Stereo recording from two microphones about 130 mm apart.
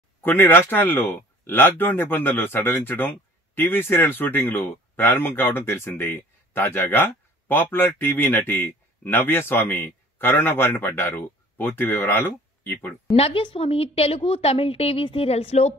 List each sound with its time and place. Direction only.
0.2 s speech: 15° left (ahead or behind)
13.1 s a woman's voice: 45° left (ahead or behind)